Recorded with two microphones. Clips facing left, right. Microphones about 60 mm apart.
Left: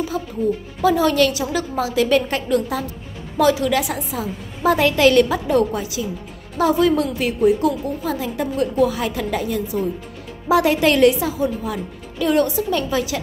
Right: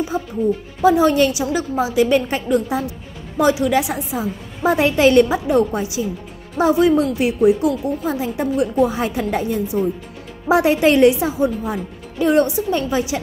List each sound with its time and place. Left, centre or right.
0.1 s a woman's voice: right